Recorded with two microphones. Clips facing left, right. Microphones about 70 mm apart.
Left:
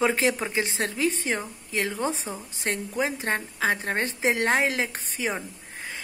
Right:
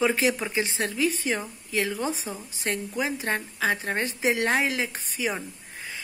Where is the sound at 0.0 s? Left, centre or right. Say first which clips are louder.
Even; left.